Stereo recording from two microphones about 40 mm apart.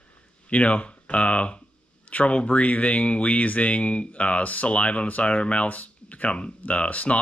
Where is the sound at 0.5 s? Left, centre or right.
Left.